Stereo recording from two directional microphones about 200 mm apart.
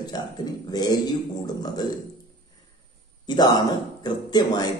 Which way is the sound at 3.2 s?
20° left (ahead or behind).